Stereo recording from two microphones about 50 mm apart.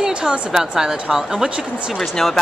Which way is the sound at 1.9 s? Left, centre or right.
Centre.